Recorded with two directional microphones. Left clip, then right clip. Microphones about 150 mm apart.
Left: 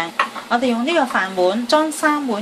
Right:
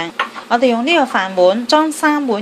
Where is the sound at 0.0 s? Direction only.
35° right (ahead or behind).